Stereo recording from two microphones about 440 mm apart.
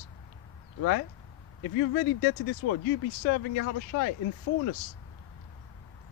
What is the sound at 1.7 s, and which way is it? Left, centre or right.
Speech, left.